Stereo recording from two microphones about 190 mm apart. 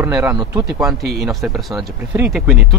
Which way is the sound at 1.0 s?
60° right (ahead or behind).